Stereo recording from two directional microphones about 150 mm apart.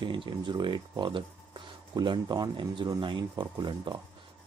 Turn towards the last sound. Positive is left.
turn(degrees=-30)  # may be behind; listen again after turning